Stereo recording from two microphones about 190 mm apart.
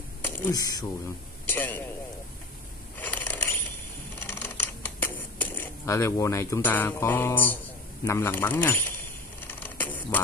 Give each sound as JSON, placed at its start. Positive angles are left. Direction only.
{"t": 0.2, "sound": "speech", "side_deg": 20}
{"t": 3.0, "sound": "mechanisms", "side_deg": 10}
{"t": 4.2, "sound": "scissors", "side_deg": 10}
{"t": 8.0, "sound": "speech", "side_deg": 15}
{"t": 9.5, "sound": "a sound", "side_deg": 10}